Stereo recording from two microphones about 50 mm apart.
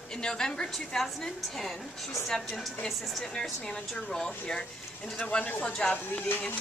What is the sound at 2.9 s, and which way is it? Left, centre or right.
Speech, centre.